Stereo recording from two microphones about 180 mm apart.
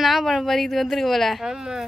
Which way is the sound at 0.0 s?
Centre (ahead or behind).